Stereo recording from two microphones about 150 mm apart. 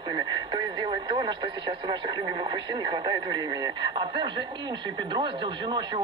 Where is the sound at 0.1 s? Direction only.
30° right (ahead or behind).